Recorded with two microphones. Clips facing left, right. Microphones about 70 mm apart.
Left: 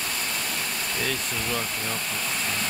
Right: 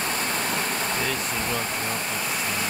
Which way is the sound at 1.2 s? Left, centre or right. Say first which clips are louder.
Right 2 dB; right.